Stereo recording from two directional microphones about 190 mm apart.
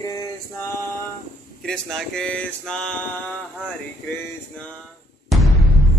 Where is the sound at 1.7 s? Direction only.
Centre (ahead or behind).